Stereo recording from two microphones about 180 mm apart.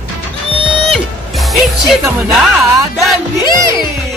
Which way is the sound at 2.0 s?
10° right (ahead or behind).